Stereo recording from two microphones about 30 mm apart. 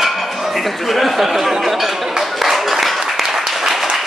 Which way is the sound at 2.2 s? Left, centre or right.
Centre.